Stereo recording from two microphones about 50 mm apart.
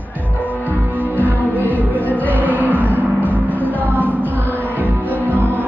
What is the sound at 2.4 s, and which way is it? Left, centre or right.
Music, right.